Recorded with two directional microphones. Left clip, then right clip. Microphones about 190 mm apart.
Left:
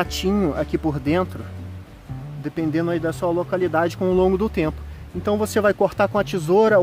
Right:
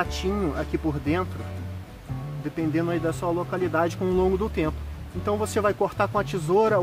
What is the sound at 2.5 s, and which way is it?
Speech, 45° left (ahead or behind).